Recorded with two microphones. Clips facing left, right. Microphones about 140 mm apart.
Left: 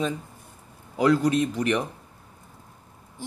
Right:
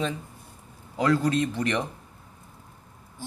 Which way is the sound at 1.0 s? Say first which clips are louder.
Left 2 dB; 10° left (ahead or behind).